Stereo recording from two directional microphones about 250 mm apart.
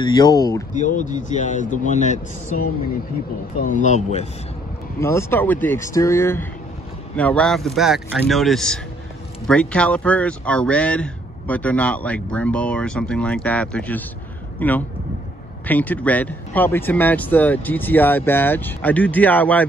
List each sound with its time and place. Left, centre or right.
0.0 s speech: centre
0.7 s a man's voice: left
3.6 s a man's voice: left
5.0 s speech: centre